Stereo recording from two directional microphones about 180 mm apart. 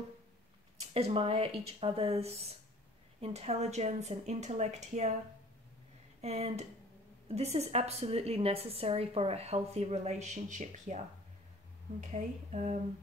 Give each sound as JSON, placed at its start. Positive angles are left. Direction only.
{"t": 0.7, "sound": "a woman's voice", "side_deg": -35}
{"t": 6.2, "sound": "a woman's voice", "side_deg": -40}
{"t": 12.0, "sound": "a woman's voice", "side_deg": -40}